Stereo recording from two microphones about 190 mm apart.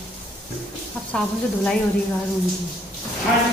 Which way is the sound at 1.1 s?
5° left (ahead or behind).